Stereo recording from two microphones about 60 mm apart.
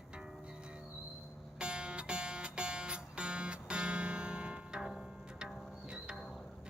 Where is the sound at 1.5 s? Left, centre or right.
Centre.